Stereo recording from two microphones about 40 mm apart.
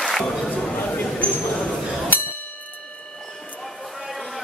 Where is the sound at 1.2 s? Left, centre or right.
Left.